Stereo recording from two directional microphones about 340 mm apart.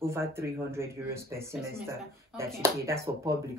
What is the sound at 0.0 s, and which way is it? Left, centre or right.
Speech, centre.